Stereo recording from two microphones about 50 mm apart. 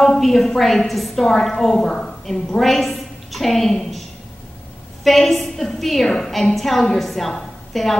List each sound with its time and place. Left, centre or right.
0.0 s a woman's voice: centre
5.0 s a woman's voice: centre
6.0 s a woman's voice: centre
6.5 s a woman's voice: centre